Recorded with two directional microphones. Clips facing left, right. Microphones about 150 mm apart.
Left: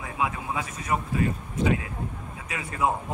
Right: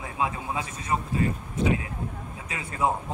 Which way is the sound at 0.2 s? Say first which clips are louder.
Even; 30° right (ahead or behind).